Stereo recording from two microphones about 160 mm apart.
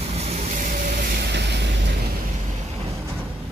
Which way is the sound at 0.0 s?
40° right (ahead or behind).